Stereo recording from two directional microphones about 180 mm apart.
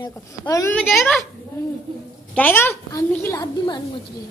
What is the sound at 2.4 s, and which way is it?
A woman's voice, 10° left (ahead or behind).